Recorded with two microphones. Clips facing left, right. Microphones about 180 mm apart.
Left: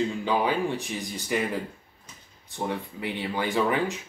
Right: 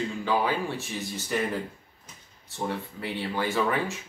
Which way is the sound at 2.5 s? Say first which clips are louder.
Left 1 dB; 15° left (ahead or behind).